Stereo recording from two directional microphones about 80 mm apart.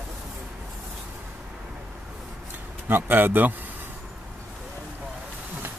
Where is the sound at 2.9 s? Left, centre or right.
Right.